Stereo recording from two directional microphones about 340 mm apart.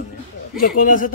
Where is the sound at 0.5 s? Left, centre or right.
Left.